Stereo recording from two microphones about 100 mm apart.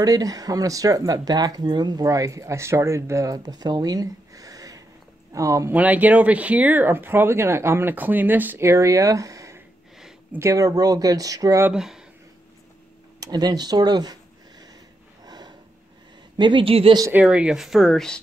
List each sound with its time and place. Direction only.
0.0 s speech: 40° right (ahead or behind)
5.7 s speech: 15° right (ahead or behind); by 11.6 s 35° right (ahead or behind)
11.7 s speech: 5° right (ahead or behind)
13.2 s speech: 40° right (ahead or behind)
15.2 s a sound: 45° right (ahead or behind)
16.3 s a woman's voice: 55° right (ahead or behind)
17.1 s speech: 10° right (ahead or behind); by 18.2 s 5° left (ahead or behind)